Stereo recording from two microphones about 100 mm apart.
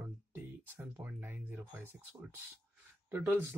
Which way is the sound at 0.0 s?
20° right (ahead or behind).